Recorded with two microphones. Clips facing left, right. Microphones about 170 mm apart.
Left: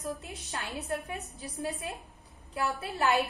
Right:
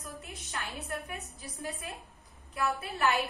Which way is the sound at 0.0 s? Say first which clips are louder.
Left 7 dB; 35° left (ahead or behind).